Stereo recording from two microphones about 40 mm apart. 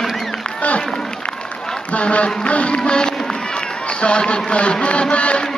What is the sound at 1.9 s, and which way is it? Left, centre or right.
Speech, left.